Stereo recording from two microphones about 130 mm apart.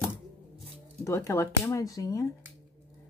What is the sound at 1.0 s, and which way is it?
Speech, 20° left (ahead or behind).